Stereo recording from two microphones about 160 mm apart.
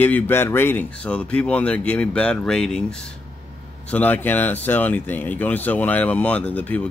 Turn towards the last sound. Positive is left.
turn(degrees=10)  # may be behind; listen again after turning